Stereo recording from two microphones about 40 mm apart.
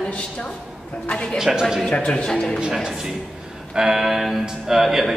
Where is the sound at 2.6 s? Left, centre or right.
Centre.